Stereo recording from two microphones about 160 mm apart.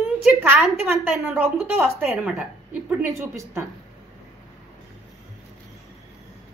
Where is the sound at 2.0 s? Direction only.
10° right (ahead or behind).